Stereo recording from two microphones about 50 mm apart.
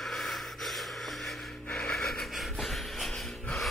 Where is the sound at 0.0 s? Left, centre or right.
Centre.